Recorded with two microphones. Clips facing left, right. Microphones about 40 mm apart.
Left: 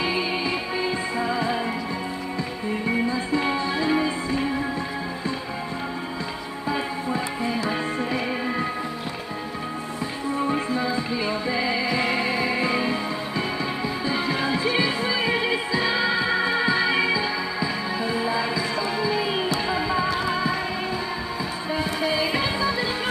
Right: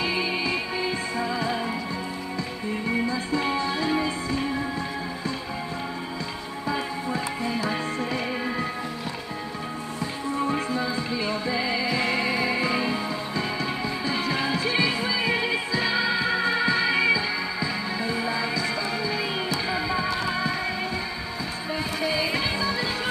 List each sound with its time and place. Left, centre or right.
0.0 s music: centre
3.4 s music: centre
6.7 s music: centre
10.5 s music: centre
14.7 s music: centre
22.3 s music: centre